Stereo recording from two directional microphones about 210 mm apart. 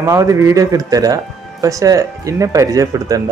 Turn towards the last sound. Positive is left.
turn(degrees=-15)  # may be behind; listen again after turning